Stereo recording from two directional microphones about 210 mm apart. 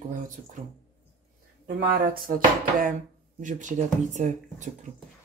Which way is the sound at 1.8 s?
45° right (ahead or behind).